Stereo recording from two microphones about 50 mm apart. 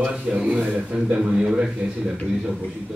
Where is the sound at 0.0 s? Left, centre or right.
Centre.